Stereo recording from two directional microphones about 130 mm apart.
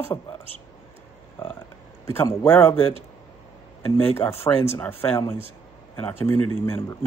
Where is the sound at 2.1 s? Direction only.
20° left (ahead or behind).